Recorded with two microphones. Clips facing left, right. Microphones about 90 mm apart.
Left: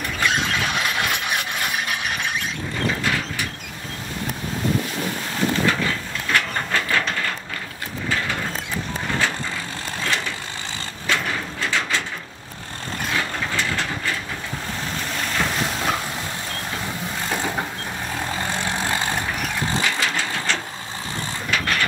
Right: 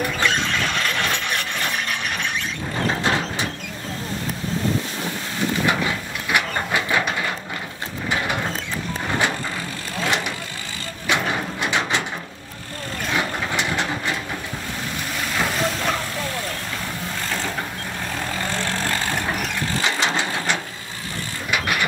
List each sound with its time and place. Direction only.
0.2 s mechanisms: 5° left (ahead or behind)
1.9 s squeal: 5° left (ahead or behind)
3.0 s vehicle: 25° right (ahead or behind)
5.7 s printer: 15° right (ahead or behind)
10.0 s vehicle: 20° right (ahead or behind)
11.1 s a sound: 20° right (ahead or behind)
13.1 s vehicle: 20° right (ahead or behind)
18.4 s vehicle: 15° left (ahead or behind)
19.8 s vehicle: 20° right (ahead or behind)
21.5 s mechanisms: 15° right (ahead or behind)